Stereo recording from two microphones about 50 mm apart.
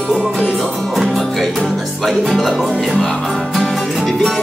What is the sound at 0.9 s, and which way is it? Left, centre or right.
Music, centre.